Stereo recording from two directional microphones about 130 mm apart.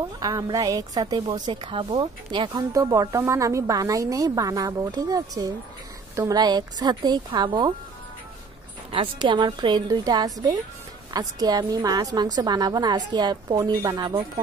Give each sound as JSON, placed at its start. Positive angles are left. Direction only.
{"t": 0.2, "sound": "a woman's voice", "side_deg": -30}
{"t": 2.7, "sound": "a woman's voice", "side_deg": -25}
{"t": 8.9, "sound": "a woman's voice", "side_deg": -40}